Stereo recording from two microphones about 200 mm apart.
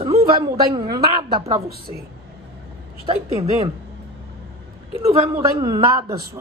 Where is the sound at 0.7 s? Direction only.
20° right (ahead or behind).